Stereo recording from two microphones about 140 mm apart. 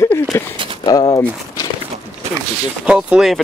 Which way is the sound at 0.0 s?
20° left (ahead or behind).